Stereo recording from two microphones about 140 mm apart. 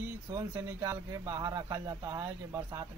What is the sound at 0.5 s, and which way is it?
Speech, 20° right (ahead or behind).